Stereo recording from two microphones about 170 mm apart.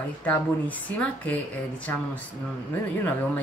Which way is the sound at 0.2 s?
10° left (ahead or behind).